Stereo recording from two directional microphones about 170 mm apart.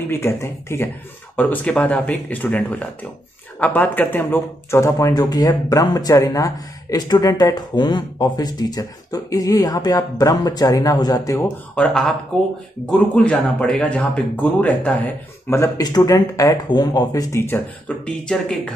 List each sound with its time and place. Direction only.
0.1 s speech: 15° left (ahead or behind)
11.7 s speech: 5° left (ahead or behind)
15.5 s speech: 20° left (ahead or behind)